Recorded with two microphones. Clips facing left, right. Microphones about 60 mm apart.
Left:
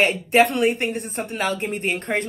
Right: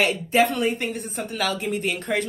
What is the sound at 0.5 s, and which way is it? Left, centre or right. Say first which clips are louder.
Speech: left 4 dB; left.